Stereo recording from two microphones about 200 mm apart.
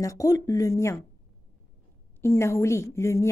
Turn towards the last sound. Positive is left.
turn(degrees=15)  # may be behind; listen again after turning